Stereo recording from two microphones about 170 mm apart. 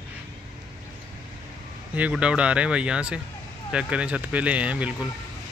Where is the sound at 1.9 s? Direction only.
5° right (ahead or behind).